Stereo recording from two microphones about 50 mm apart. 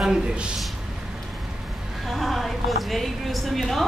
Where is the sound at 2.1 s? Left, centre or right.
Centre.